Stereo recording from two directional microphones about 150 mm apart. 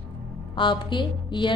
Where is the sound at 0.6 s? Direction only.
30° left (ahead or behind).